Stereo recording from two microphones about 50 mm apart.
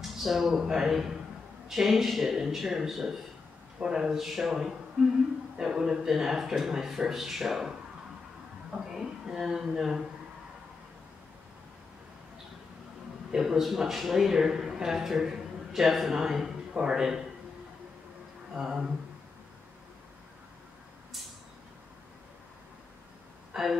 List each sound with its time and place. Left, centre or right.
0.0 s a man's voice: centre
8.9 s a man's voice: centre
13.3 s a man's voice: centre
18.6 s a man's voice: centre
23.5 s speech: centre